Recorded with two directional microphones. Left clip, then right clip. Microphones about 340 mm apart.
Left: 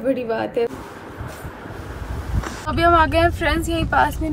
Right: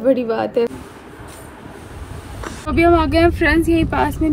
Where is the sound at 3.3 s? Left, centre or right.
Left.